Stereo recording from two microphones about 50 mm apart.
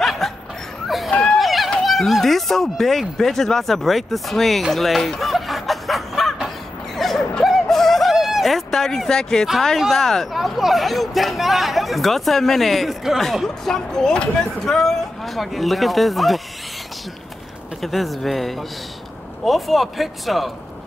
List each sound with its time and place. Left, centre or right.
0.0 s a sound: centre
1.1 s chatter: left
1.4 s run: centre
1.8 s speech: centre
7.0 s a sound: centre
9.8 s speech: centre
10.3 s speech: centre
13.7 s speech: centre
17.8 s speech: centre